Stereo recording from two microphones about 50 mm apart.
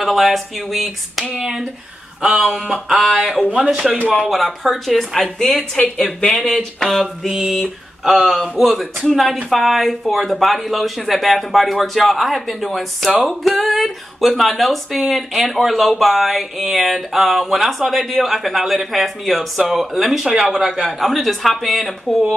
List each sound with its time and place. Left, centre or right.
0.0 s speech: centre
1.2 s speech: centre
2.2 s speech: centre
3.5 s speech: centre
4.3 s speech: centre
5.5 s speech: left
6.5 s speech: centre